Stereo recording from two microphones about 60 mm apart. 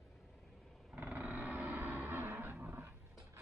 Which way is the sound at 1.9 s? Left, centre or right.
Right.